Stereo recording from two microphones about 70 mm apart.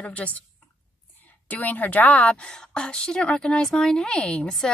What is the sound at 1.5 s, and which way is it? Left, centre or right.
A woman's voice, left.